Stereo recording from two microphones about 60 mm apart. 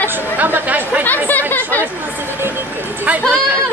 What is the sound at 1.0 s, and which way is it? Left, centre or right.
Speech, left.